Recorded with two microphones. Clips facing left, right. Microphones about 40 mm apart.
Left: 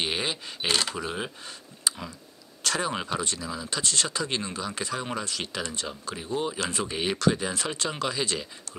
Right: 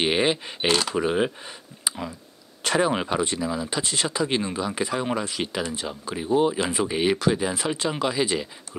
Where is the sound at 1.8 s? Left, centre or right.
Centre.